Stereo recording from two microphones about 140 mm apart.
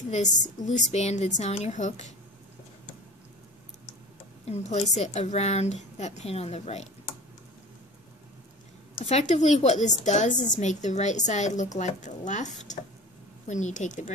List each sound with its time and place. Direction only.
0.1 s a woman's voice: 55° left (ahead or behind)
4.5 s a woman's voice: 50° left (ahead or behind)
9.3 s a woman's voice: 55° left (ahead or behind)